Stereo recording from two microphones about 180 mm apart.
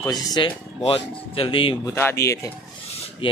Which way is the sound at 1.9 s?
15° left (ahead or behind).